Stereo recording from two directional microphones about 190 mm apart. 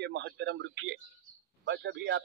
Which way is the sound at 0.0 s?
65° right (ahead or behind).